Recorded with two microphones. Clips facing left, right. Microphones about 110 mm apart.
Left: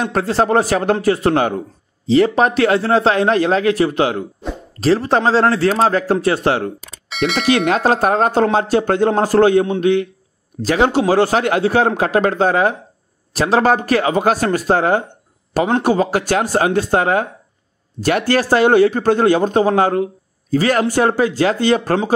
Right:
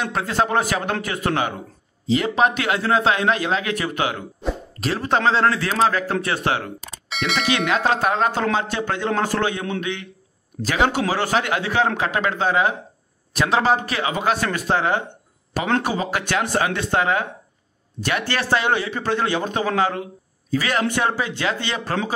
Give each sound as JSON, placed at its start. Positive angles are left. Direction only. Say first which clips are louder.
{"t": 0.0, "sound": "a man's voice", "louder": "left 5 dB", "side_deg": 40}
{"t": 6.8, "sound": "speech", "louder": "left 7 dB", "side_deg": 0}
{"t": 7.5, "sound": "a man's voice", "louder": "left 3 dB", "side_deg": 40}
{"t": 13.6, "sound": "a man's voice", "louder": "left 7 dB", "side_deg": 45}